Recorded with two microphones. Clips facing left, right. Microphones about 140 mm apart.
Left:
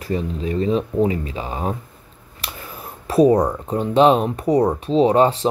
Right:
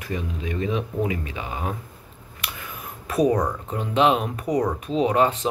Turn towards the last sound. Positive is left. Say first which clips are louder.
# left 5 dB
turn(degrees=30)  # may be behind; listen again after turning